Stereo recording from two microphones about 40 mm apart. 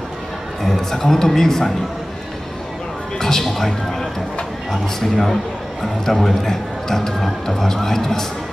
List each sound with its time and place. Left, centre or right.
0.6 s a man's voice: centre
3.2 s a man's voice: centre